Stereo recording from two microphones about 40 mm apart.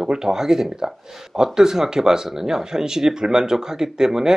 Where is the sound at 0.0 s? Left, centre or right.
Centre.